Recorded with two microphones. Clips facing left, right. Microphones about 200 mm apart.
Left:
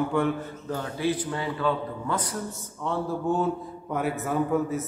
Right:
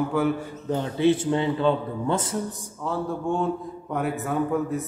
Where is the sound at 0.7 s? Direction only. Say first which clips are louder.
Right 7 dB; 25° right (ahead or behind).